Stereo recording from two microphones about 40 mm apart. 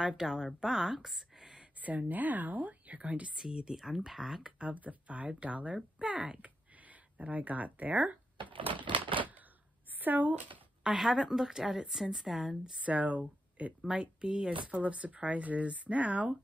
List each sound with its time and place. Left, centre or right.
0.0 s a woman's voice: centre
1.8 s speech: right
3.3 s a woman's voice: centre
4.6 s speech: right
6.4 s a sound: right
9.9 s a sound: right
10.9 s a woman's voice: centre
12.8 s speech: right
13.8 s speech: right